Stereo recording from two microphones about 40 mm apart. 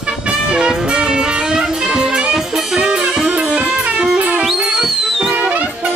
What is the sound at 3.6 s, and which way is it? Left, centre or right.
Music, right.